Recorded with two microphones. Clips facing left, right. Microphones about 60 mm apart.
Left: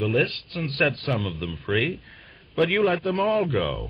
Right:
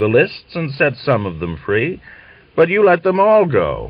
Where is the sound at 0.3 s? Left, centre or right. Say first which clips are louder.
Right 7 dB; right.